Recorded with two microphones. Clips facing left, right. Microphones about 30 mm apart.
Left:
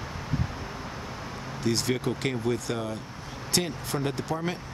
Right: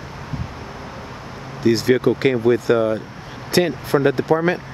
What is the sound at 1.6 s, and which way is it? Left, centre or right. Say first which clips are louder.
Speech: right 11 dB; right.